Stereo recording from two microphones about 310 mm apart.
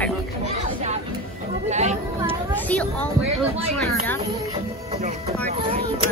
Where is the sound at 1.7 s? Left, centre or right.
Right.